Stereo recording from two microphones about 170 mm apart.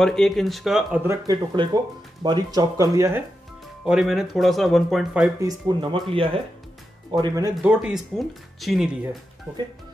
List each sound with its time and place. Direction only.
0.0 s speech: 5° left (ahead or behind)
1.0 s speech: 25° right (ahead or behind)
3.8 s speech: 5° right (ahead or behind)
5.4 s speech: 25° right (ahead or behind)
7.5 s speech: 5° right (ahead or behind)